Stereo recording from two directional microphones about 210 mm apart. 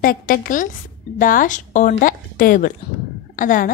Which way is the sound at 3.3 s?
40° left (ahead or behind).